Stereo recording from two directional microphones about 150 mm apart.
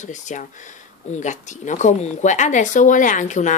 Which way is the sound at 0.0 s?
55° left (ahead or behind).